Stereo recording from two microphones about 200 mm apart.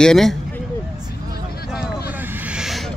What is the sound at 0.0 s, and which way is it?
Speech, centre (ahead or behind).